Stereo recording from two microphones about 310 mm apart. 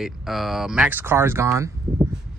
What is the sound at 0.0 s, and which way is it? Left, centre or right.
Speech, centre.